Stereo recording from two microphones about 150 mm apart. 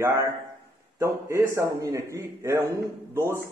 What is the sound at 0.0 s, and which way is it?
A man's voice, 15° right (ahead or behind).